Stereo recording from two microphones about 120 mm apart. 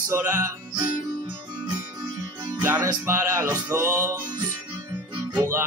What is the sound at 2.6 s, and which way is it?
Music, 20° right (ahead or behind).